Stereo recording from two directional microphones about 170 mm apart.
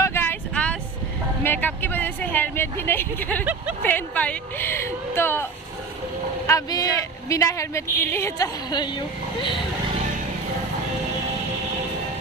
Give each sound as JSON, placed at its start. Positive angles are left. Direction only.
{"t": 0.0, "sound": "vehicle", "side_deg": 15}
{"t": 1.4, "sound": "speech", "side_deg": 10}